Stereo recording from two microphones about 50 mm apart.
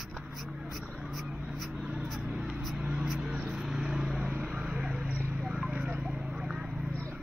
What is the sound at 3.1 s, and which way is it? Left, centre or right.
Vehicle, right.